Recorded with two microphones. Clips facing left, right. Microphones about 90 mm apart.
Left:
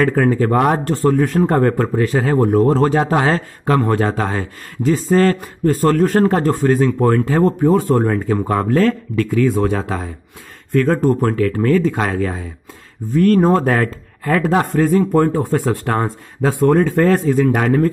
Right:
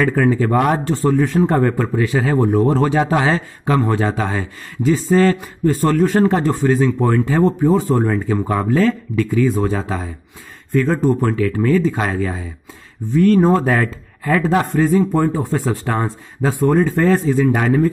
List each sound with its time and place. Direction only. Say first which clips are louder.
0.1 s speech: left 1 dB; 45° left (ahead or behind)
7.5 s speech: left 1 dB; 60° left (ahead or behind)